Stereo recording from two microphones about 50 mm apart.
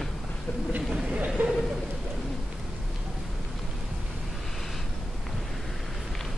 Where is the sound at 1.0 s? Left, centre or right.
Right.